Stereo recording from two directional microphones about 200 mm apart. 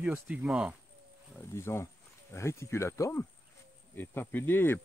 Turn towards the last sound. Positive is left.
turn(degrees=10)  # may be behind; listen again after turning